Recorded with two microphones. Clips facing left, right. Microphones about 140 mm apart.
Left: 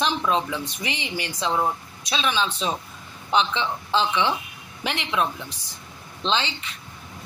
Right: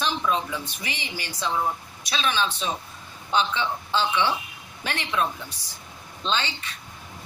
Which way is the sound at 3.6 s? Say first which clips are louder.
Left 2 dB; 25° left (ahead or behind).